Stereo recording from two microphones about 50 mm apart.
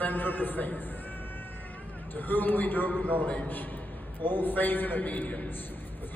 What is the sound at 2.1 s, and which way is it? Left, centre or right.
A man's voice, left.